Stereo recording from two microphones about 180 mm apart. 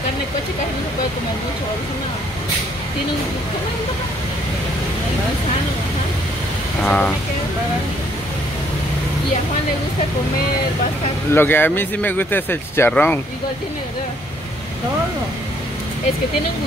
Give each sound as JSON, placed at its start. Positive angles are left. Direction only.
{"t": 6.8, "sound": "speech", "side_deg": 5}
{"t": 11.3, "sound": "speech", "side_deg": 10}